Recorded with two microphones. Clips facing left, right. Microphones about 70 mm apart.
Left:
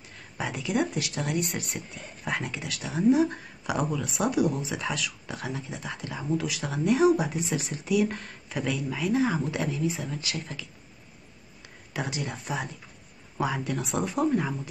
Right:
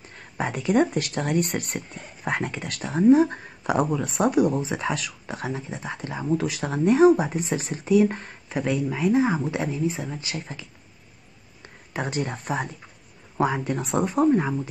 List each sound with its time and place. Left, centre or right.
0.1 s a sound: right
0.9 s speech: right
11.9 s speech: right
14.3 s speech: right